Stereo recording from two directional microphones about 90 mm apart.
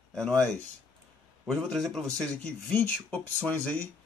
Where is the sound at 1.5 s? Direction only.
5° left (ahead or behind).